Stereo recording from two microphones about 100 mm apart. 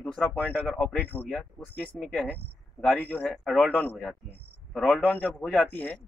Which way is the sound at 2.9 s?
20° left (ahead or behind).